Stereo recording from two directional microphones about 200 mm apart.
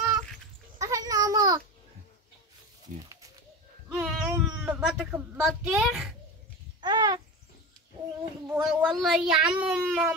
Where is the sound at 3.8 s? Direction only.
5° right (ahead or behind).